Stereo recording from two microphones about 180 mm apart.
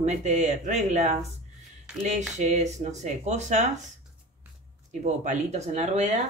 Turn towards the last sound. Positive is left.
turn(degrees=-40)  # may be behind; listen again after turning